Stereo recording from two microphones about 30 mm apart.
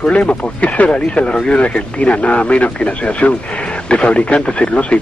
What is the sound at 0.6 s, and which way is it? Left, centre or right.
Speech, left.